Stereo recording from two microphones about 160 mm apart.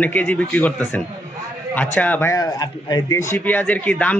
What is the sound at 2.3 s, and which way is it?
Speech, 25° left (ahead or behind).